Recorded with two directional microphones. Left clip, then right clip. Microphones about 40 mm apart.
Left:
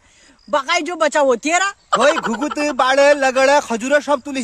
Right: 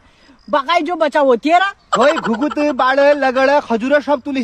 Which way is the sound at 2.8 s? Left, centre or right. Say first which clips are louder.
Even; left.